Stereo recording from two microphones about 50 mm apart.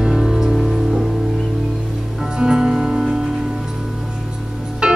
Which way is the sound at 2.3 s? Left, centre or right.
Centre.